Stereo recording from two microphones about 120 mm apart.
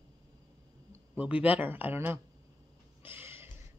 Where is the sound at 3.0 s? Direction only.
20° right (ahead or behind).